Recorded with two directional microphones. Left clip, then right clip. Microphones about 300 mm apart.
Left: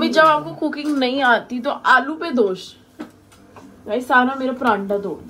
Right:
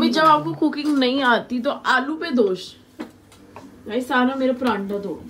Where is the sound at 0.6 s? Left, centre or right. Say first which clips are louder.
Right 1 dB; centre.